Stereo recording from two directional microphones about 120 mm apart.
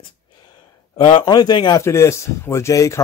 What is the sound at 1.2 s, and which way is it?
Speech, 35° left (ahead or behind).